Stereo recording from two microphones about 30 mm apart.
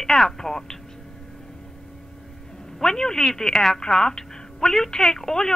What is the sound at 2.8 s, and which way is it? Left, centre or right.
A woman's voice, centre.